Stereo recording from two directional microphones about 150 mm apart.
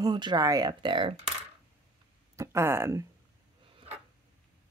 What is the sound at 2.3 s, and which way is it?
Speech, 20° right (ahead or behind).